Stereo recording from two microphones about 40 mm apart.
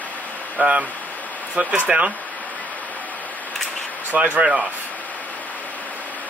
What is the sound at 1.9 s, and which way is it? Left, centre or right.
Speech, right.